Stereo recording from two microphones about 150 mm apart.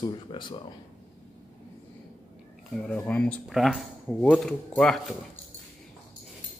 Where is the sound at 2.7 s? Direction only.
5° left (ahead or behind).